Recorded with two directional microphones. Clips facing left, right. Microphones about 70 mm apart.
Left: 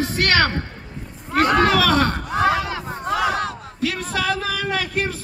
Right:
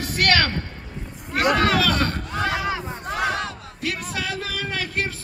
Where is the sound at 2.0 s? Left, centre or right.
Left.